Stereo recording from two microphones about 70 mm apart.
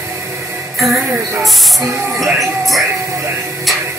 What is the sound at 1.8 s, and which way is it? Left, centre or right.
Speech, right.